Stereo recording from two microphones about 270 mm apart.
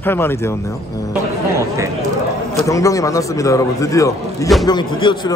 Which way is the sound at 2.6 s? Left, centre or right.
Centre.